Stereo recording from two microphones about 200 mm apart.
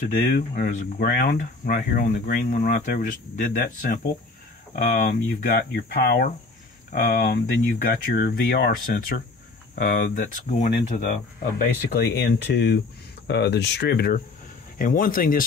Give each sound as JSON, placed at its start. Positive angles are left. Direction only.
{"t": 0.1, "sound": "speech", "side_deg": 50}